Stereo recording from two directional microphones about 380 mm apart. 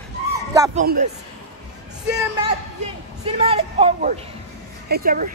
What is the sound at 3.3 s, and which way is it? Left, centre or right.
A woman's voice, centre.